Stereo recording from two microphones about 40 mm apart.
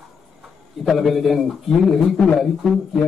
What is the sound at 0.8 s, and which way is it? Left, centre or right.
A man's voice, centre.